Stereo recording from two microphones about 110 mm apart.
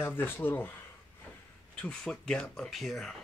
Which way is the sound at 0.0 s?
20° left (ahead or behind).